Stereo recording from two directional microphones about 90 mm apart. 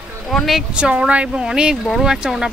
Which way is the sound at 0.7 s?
10° right (ahead or behind).